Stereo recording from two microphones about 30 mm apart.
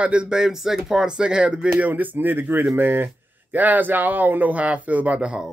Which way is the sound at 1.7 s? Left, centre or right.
Right.